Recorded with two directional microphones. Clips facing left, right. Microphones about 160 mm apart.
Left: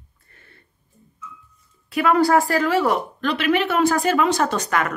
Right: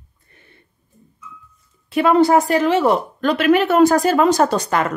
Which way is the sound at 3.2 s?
45° right (ahead or behind).